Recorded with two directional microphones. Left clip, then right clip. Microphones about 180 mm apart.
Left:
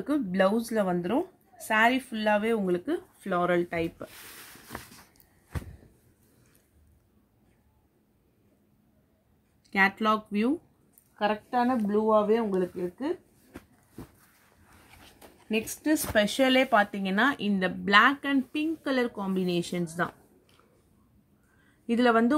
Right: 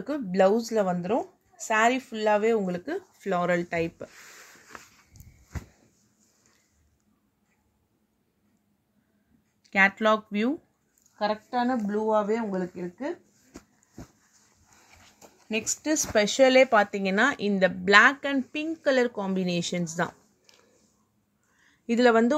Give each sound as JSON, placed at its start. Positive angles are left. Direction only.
{"t": 0.0, "sound": "speech", "side_deg": -40}
{"t": 9.7, "sound": "speech", "side_deg": -35}
{"t": 15.4, "sound": "a woman's voice", "side_deg": -30}
{"t": 21.8, "sound": "speech", "side_deg": -45}